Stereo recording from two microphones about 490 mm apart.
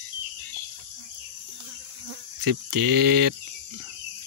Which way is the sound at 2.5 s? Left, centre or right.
Right.